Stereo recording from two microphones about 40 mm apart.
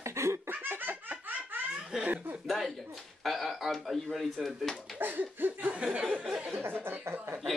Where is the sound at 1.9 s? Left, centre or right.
Centre.